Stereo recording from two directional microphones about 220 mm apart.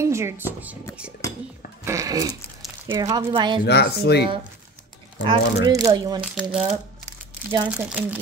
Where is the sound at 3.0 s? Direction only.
15° right (ahead or behind).